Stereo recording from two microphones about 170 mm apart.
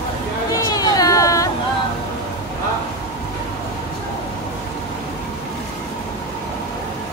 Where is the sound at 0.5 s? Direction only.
20° left (ahead or behind).